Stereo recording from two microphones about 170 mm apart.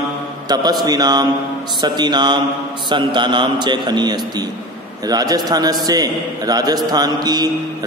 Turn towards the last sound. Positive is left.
turn(degrees=-25)  # may be behind; listen again after turning